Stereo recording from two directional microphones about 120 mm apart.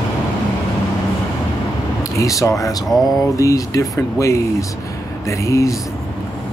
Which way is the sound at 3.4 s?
25° left (ahead or behind).